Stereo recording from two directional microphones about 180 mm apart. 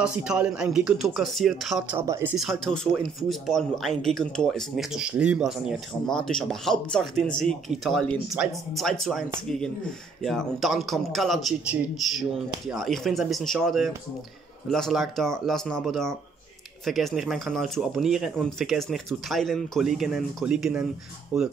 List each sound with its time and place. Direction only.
0.0 s a man's voice: 5° right (ahead or behind)
2.0 s speech: 15° right (ahead or behind)
2.3 s a man's voice: centre (ahead or behind)